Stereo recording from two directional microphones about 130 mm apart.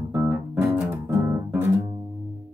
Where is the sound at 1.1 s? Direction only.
20° right (ahead or behind).